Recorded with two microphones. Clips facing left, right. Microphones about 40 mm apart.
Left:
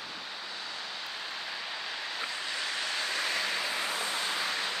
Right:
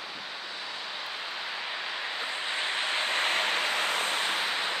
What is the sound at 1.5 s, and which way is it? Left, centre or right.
Vehicle, right.